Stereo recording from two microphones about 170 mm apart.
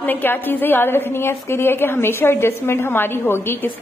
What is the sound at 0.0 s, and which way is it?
A woman's voice, 10° left (ahead or behind).